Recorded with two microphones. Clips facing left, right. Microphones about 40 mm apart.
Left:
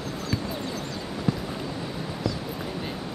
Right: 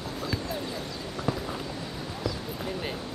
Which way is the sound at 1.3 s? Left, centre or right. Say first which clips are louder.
Left 2 dB; centre.